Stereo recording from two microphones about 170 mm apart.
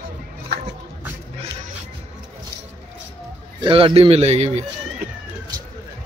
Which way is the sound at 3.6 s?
30° right (ahead or behind).